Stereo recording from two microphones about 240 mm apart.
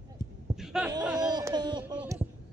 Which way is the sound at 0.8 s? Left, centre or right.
Centre.